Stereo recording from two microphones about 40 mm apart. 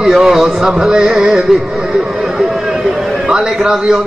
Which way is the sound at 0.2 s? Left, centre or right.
Centre.